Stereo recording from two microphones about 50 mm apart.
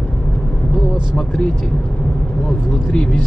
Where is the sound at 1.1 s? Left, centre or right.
Centre.